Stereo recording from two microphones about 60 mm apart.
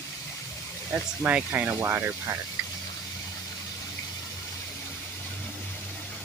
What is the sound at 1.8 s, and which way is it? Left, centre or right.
Speech, right.